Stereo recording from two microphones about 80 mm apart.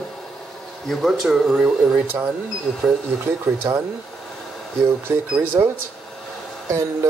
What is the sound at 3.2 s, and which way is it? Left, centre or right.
Speech, right.